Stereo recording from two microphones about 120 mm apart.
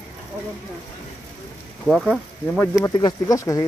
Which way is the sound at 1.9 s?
Centre (ahead or behind).